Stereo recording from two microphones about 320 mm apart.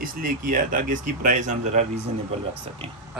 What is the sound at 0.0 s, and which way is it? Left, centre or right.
Speech, right.